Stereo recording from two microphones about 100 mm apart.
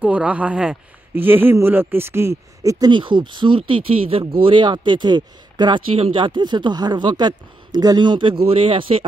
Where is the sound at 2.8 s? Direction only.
50° right (ahead or behind); by 4.2 s 70° right (ahead or behind).